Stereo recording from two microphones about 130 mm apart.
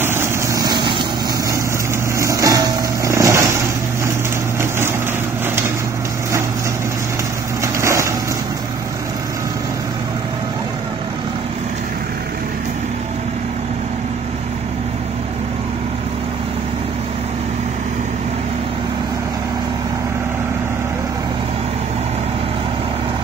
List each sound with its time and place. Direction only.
0.0 s vehicle: 20° right (ahead or behind)
2.1 s vehicle: 25° right (ahead or behind)
7.6 s a sound: 20° right (ahead or behind)